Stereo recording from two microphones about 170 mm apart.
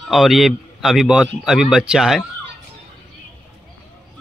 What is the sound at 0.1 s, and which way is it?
A man's voice, centre (ahead or behind).